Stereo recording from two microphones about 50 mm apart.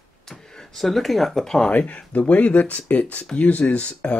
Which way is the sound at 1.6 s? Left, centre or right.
Left.